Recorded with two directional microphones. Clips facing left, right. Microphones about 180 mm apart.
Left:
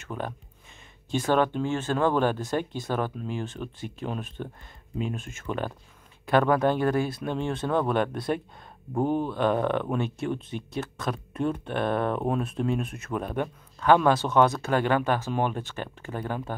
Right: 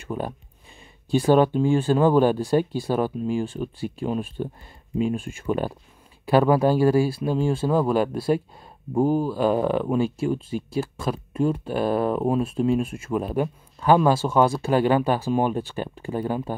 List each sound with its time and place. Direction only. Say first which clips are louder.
1.1 s speech: right 6 dB; 10° right (ahead or behind)
15.0 s speech: right 4 dB; 35° right (ahead or behind)
15.3 s speech: right 5 dB; 10° right (ahead or behind)